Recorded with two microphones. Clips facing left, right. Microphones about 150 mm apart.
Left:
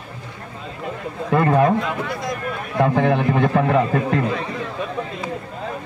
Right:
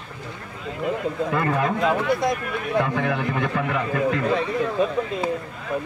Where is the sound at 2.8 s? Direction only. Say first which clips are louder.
Left 6 dB; 35° left (ahead or behind).